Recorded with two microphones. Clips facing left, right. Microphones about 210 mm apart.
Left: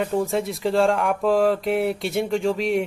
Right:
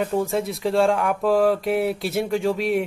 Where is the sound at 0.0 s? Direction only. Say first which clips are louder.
Even; centre (ahead or behind).